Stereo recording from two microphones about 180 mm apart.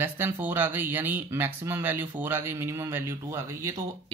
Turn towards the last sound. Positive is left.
turn(degrees=-15)  # may be behind; listen again after turning